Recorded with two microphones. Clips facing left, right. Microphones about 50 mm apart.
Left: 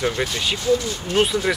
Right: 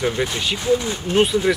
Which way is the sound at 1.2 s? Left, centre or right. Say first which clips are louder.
Right 3 dB; centre.